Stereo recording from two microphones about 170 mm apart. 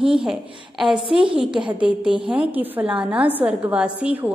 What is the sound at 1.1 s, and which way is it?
Speech, 30° right (ahead or behind).